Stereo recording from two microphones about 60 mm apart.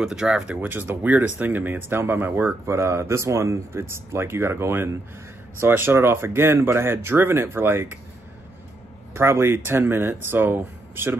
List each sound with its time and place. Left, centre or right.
0.0 s speech: centre
0.6 s speech: right
2.7 s speech: right
9.1 s speech: right